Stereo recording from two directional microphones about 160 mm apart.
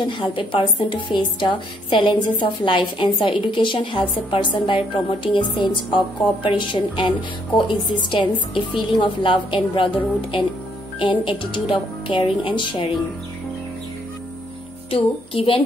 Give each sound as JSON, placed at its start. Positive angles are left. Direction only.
{"t": 0.2, "sound": "a woman's voice", "side_deg": 30}
{"t": 11.0, "sound": "a woman's voice", "side_deg": 30}
{"t": 14.9, "sound": "a woman's voice", "side_deg": 35}